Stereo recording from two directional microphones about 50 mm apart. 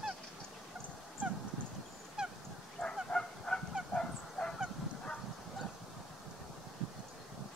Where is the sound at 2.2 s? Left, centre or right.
Centre.